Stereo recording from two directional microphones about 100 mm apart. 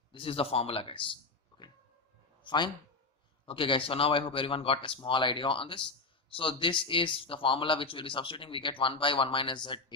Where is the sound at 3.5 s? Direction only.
60° left (ahead or behind).